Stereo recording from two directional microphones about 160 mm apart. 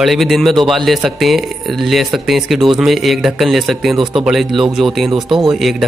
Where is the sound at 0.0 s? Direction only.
Centre (ahead or behind).